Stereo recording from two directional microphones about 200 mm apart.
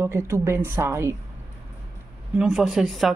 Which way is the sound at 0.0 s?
15° right (ahead or behind).